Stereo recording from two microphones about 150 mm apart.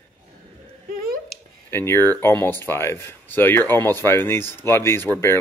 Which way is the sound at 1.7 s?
15° left (ahead or behind).